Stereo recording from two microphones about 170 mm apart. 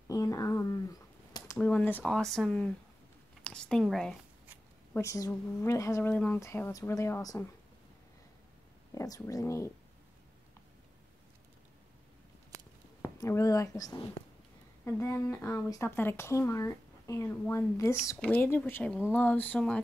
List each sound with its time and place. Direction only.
0.1 s speech: 20° left (ahead or behind)
1.6 s speech: 10° left (ahead or behind)
4.9 s speech: 15° left (ahead or behind)
8.9 s speech: 20° left (ahead or behind)
13.0 s speech: 15° left (ahead or behind)